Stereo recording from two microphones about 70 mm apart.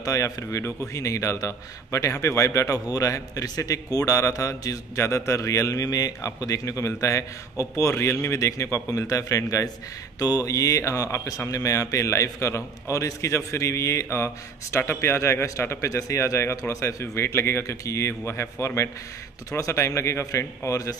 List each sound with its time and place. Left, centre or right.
0.0 s a man's voice: left
10.1 s a man's voice: left